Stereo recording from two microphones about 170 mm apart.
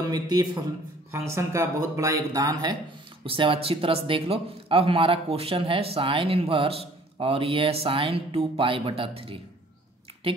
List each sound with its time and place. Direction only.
0.1 s a man's voice: 25° right (ahead or behind)